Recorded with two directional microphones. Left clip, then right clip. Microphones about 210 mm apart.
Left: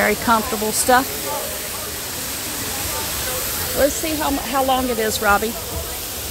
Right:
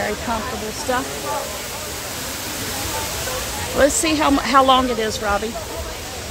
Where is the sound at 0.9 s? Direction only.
25° left (ahead or behind).